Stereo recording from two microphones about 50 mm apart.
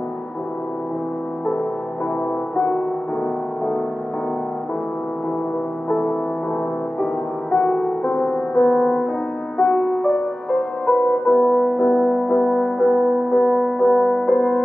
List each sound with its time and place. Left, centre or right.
2.5 s music: centre
5.9 s music: centre
7.5 s music: centre
8.1 s music: left
8.6 s music: centre
11.2 s music: centre